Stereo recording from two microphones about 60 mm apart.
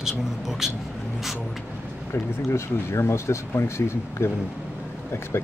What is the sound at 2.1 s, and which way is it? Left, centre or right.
Speech, left.